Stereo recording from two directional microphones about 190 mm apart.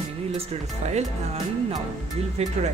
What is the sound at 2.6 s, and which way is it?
Speech, 35° right (ahead or behind).